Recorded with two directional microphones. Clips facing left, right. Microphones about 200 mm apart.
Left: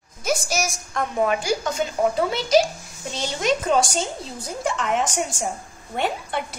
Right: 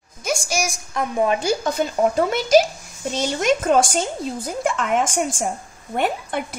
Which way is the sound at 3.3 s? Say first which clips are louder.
Right 2 dB; 50° right (ahead or behind).